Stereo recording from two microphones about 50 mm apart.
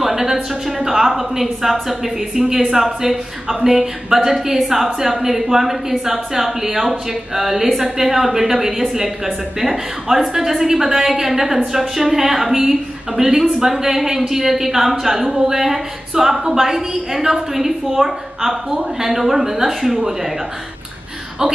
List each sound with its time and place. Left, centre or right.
0.0 s a woman's voice: centre